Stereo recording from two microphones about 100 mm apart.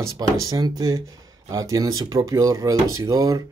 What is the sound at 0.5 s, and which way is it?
Speech, 35° right (ahead or behind).